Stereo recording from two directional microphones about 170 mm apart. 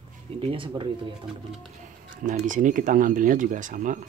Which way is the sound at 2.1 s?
50° right (ahead or behind).